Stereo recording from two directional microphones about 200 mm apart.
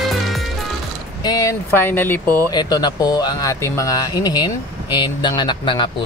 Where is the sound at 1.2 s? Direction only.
15° left (ahead or behind).